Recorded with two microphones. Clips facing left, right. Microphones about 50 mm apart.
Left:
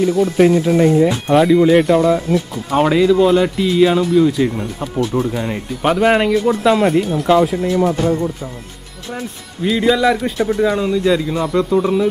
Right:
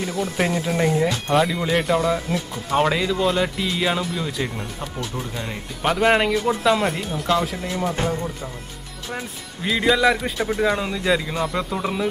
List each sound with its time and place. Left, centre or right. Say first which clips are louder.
0.0 s speech: left 11 dB; centre
8.0 s music: left 7 dB; right
9.1 s speech: left 4 dB; centre